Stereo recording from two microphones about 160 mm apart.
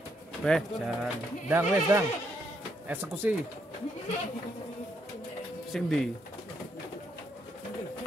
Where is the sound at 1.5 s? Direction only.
15° right (ahead or behind).